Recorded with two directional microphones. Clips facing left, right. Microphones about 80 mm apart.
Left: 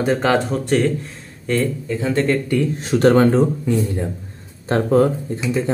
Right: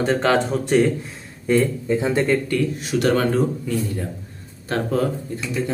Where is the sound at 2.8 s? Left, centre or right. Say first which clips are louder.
Left 8 dB; left.